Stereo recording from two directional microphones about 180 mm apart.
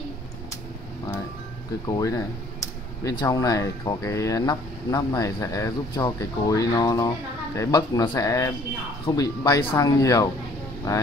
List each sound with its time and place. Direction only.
1.9 s speech: 20° left (ahead or behind)